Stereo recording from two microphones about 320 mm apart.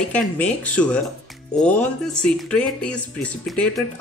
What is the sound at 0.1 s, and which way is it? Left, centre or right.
Speech, centre.